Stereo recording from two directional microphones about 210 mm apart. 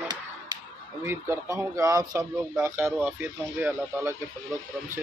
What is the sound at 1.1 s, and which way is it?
Speech, 10° right (ahead or behind).